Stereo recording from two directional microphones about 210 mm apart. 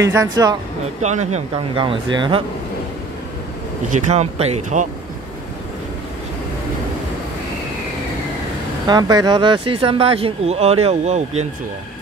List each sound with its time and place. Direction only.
0.0 s speech: 15° right (ahead or behind)
1.0 s speech: 30° right (ahead or behind)
3.9 s speech: 30° right (ahead or behind)
8.8 s speech: 20° right (ahead or behind)